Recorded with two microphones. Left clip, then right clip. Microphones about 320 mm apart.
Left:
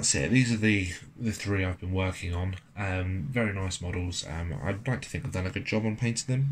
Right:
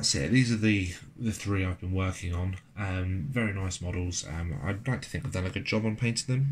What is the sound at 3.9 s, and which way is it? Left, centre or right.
Speech, centre.